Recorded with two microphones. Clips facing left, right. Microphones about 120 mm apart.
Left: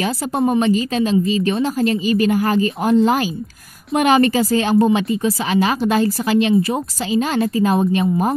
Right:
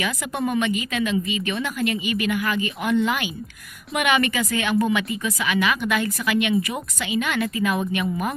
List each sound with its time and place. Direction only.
0.0 s a woman's voice: 30° left (ahead or behind)